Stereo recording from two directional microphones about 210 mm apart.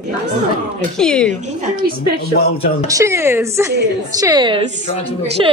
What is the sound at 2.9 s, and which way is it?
A woman's voice, 15° right (ahead or behind).